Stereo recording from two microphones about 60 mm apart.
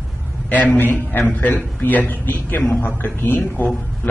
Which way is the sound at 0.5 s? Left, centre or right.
Left.